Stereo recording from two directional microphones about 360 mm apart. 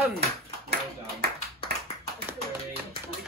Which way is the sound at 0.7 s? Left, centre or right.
Right.